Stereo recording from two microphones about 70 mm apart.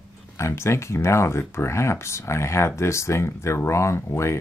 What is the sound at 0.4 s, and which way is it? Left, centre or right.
Speech, left.